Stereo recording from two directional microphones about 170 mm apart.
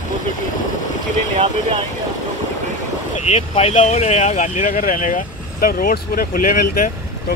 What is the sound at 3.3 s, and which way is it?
Speech, 40° left (ahead or behind).